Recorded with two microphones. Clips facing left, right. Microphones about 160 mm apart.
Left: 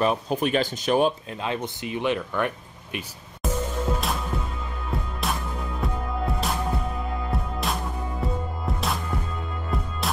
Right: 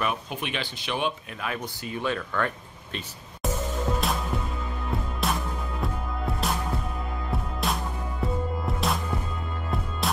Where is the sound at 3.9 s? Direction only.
5° left (ahead or behind).